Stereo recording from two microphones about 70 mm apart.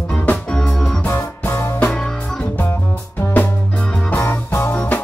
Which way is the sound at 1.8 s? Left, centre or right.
Centre.